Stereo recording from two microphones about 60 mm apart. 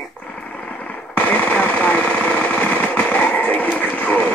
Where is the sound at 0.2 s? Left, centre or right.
Centre.